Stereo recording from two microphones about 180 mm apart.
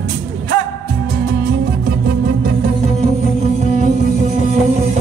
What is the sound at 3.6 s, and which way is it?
Music, 40° right (ahead or behind).